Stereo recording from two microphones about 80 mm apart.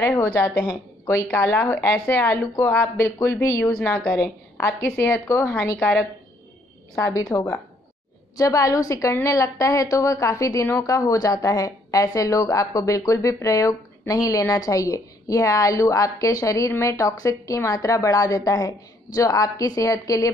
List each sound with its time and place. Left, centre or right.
0.0 s a woman's voice: left
5.8 s speech: left
7.2 s a woman's voice: left